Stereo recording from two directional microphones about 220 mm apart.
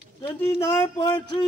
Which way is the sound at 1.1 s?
20° left (ahead or behind).